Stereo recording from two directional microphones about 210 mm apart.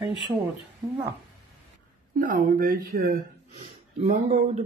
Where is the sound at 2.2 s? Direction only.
40° right (ahead or behind).